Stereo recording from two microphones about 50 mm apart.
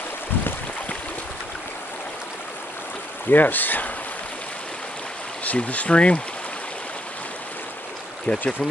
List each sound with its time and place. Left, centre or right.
3.3 s speech: left
5.4 s speech: left
8.3 s speech: left